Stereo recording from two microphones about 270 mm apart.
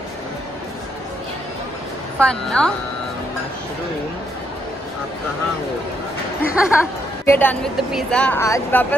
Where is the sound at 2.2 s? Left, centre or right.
Centre.